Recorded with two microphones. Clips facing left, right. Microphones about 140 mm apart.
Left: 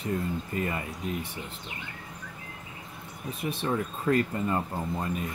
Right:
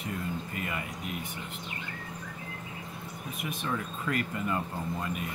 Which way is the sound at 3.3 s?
30° left (ahead or behind).